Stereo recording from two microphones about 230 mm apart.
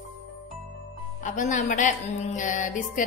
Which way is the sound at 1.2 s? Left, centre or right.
Left.